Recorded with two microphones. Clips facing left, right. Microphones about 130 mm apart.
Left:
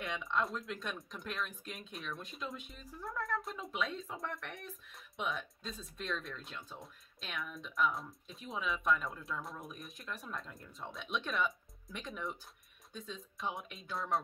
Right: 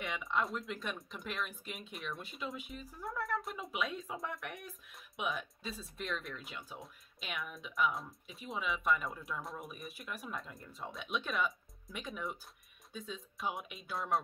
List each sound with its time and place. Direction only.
0.0 s speech: centre (ahead or behind)